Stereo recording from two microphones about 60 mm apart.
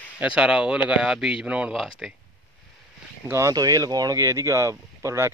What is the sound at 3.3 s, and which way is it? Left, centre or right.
Speech, right.